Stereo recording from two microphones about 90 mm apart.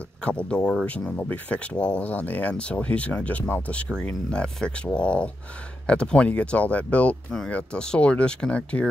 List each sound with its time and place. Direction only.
0.2 s speech: 15° left (ahead or behind)